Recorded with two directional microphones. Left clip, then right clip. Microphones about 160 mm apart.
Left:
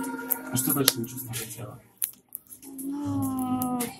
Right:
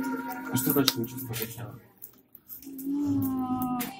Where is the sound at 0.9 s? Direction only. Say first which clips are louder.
Left 2 dB; 65° left (ahead or behind).